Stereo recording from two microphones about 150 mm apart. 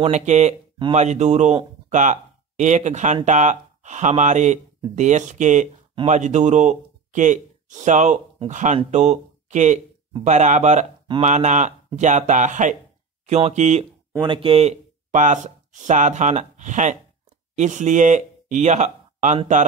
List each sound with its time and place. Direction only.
0.0 s a man's voice: 50° right (ahead or behind)
14.2 s speech: 35° right (ahead or behind); by 19.6 s 55° right (ahead or behind)